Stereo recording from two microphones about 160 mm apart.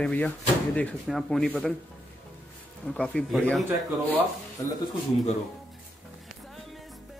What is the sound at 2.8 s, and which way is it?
Speech, 5° left (ahead or behind).